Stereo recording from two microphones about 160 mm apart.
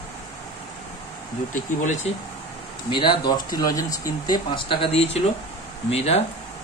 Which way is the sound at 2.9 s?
25° left (ahead or behind).